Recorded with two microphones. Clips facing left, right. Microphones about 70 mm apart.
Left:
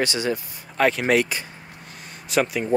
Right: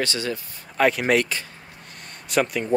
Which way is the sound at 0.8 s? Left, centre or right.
Centre.